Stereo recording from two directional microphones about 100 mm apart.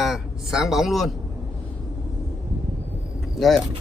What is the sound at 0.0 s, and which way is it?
A man's voice, 5° right (ahead or behind).